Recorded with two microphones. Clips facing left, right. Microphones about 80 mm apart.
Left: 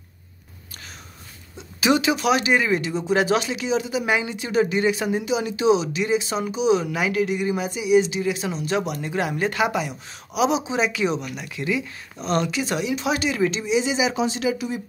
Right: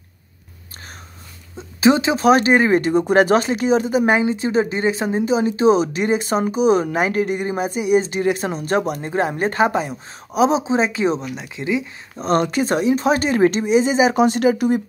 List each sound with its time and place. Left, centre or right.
1.6 s speech: right
12.2 s speech: right